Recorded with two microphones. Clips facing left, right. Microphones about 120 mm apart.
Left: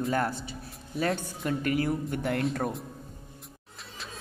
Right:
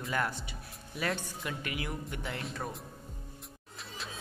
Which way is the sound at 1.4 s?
45° left (ahead or behind).